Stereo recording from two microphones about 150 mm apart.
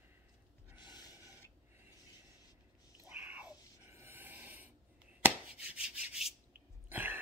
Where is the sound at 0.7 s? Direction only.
30° left (ahead or behind).